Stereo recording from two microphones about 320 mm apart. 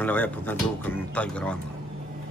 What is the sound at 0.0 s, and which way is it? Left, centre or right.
Speech, centre.